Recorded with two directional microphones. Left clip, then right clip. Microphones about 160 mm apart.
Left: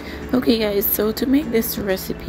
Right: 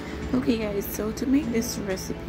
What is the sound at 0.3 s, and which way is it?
A woman's voice, 25° left (ahead or behind).